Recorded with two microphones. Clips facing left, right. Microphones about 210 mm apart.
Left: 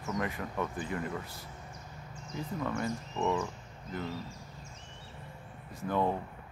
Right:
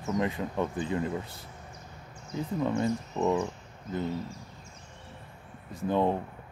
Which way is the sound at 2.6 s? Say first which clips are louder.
Right 7 dB; 30° right (ahead or behind).